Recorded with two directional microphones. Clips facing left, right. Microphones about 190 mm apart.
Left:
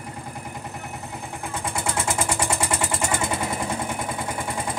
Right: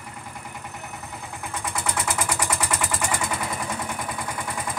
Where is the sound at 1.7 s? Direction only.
25° left (ahead or behind).